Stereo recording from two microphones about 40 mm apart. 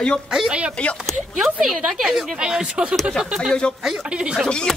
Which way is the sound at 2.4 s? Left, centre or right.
Right.